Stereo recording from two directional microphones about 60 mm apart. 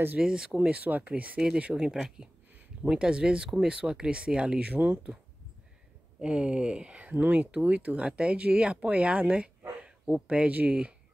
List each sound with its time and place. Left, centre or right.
0.2 s speech: centre
1.4 s speech: centre
4.7 s speech: right
6.1 s speech: centre
9.6 s a sound: centre
10.2 s speech: centre